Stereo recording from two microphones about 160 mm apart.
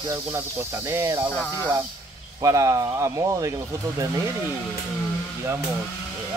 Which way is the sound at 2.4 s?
20° right (ahead or behind).